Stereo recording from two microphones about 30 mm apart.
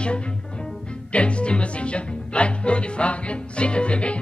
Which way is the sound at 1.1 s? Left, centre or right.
Left.